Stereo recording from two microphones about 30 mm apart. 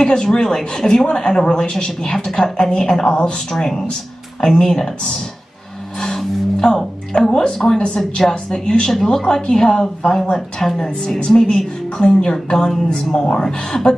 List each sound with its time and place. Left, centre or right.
0.1 s a woman's voice: left
6.6 s speech: left
7.2 s a woman's voice: left
12.7 s a woman's voice: centre
13.3 s a woman's voice: left